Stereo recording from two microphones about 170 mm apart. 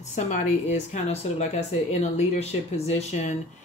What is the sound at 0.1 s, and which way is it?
Speech, 45° left (ahead or behind).